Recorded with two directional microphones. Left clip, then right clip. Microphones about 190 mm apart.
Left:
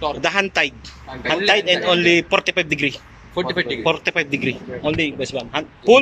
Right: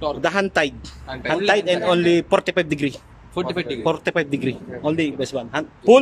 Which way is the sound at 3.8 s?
35° right (ahead or behind).